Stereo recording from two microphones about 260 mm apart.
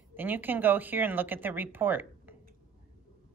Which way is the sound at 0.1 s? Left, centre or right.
Centre.